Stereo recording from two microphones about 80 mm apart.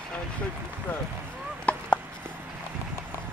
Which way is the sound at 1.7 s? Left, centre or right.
Centre.